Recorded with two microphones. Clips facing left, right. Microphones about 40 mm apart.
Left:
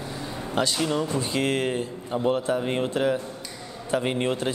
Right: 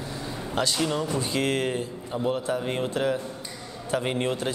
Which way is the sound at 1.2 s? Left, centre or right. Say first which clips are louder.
Left 1 dB; centre.